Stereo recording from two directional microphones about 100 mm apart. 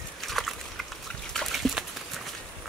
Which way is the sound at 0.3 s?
Centre (ahead or behind).